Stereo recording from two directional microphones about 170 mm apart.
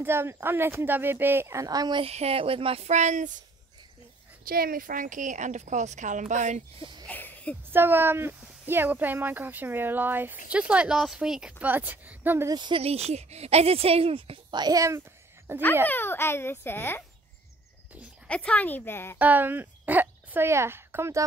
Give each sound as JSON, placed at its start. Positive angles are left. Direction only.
{"t": 0.0, "sound": "speech", "side_deg": -15}
{"t": 4.5, "sound": "a woman's voice", "side_deg": -60}
{"t": 7.1, "sound": "a sound", "side_deg": 10}
{"t": 7.7, "sound": "speech", "side_deg": -10}
{"t": 12.5, "sound": "speech", "side_deg": -30}
{"t": 15.9, "sound": "a child's voice", "side_deg": 15}
{"t": 18.2, "sound": "a child's voice", "side_deg": 5}
{"t": 19.1, "sound": "speech", "side_deg": -10}